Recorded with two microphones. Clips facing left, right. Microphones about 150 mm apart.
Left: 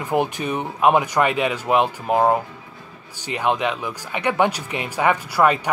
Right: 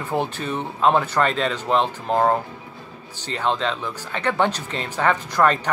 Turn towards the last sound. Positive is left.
turn(degrees=10)  # may be behind; listen again after turning